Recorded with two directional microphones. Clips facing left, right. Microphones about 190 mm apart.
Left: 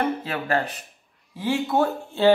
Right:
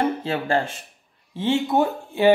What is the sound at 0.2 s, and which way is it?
Speech, 25° right (ahead or behind).